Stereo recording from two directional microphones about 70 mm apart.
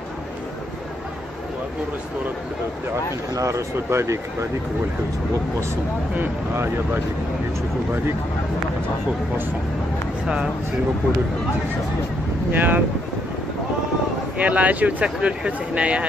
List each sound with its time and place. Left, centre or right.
3.3 s speech: right
6.1 s speech: right
10.2 s speech: centre
12.5 s speech: right
14.4 s speech: right